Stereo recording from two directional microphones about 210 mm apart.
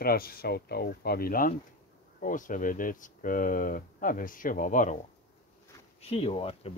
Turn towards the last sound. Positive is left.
turn(degrees=25)  # may be behind; listen again after turning